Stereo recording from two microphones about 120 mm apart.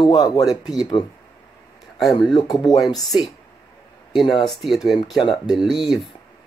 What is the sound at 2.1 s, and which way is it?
Speech, 35° left (ahead or behind).